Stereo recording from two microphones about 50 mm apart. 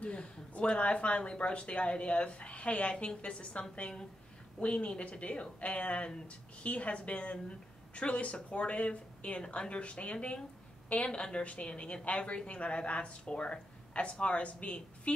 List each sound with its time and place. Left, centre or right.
0.0 s speech: left